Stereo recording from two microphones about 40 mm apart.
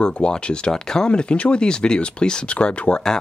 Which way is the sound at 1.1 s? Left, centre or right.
Left.